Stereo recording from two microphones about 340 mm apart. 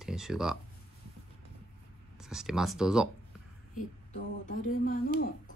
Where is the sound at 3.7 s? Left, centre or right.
Left.